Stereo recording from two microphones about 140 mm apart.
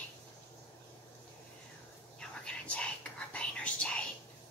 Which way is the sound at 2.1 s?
5° left (ahead or behind).